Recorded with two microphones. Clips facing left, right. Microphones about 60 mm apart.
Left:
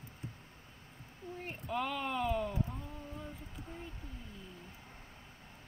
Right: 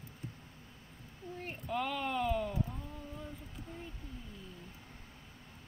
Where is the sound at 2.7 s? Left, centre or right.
Centre.